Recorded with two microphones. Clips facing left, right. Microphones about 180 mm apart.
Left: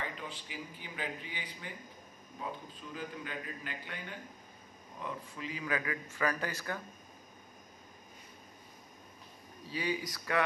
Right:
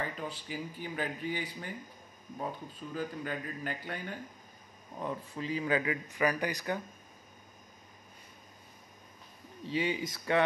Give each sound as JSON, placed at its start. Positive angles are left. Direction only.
{"t": 0.0, "sound": "a man's voice", "side_deg": -40}
{"t": 9.6, "sound": "a man's voice", "side_deg": -25}